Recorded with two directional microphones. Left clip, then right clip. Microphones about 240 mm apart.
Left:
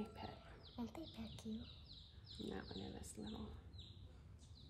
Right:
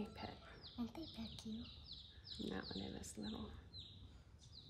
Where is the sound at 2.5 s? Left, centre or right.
Centre.